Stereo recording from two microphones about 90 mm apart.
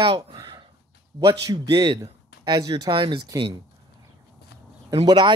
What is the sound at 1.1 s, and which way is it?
Speech, 50° right (ahead or behind).